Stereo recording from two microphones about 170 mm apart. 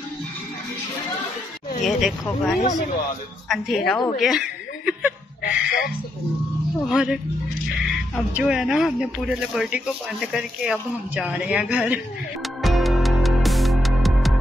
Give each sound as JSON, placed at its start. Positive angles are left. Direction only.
{"t": 1.8, "sound": "speech", "side_deg": 0}
{"t": 4.2, "sound": "chuckle", "side_deg": 0}
{"t": 5.4, "sound": "a sound", "side_deg": 55}
{"t": 6.9, "sound": "speech", "side_deg": -5}
{"t": 8.4, "sound": "speech", "side_deg": -5}
{"t": 12.6, "sound": "music", "side_deg": 0}